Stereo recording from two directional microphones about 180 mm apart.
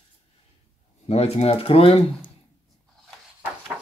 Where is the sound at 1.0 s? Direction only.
35° left (ahead or behind).